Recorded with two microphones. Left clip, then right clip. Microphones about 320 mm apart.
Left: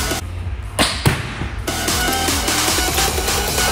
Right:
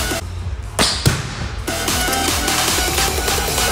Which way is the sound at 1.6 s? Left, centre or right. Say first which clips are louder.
Even; centre.